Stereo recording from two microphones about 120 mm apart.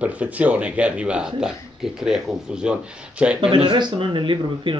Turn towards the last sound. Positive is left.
turn(degrees=-45)  # may be behind; listen again after turning